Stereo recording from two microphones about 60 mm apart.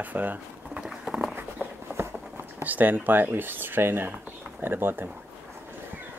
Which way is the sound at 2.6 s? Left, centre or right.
Right.